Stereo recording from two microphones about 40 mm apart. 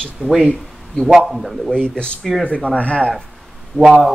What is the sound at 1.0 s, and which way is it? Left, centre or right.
Speech, centre.